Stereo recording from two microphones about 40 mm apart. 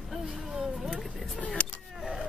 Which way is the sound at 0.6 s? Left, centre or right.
Centre.